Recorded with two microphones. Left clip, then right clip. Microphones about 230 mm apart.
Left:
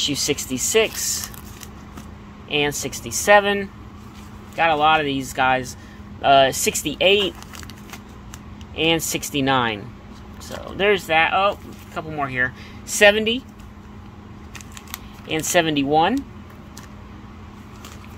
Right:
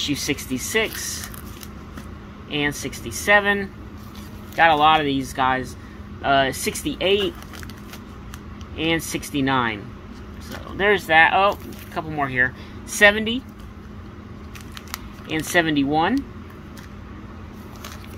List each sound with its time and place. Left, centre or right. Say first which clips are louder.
0.0 s speech: left 3 dB; left
2.5 s speech: left 3 dB; left
4.6 s speech: right 2 dB; centre; by 7.2 s left
8.7 s speech: left 3 dB; left
10.8 s speech: right 2 dB; centre
15.2 s speech: left 1 dB; left